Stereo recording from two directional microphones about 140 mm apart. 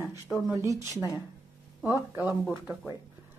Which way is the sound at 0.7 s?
25° right (ahead or behind).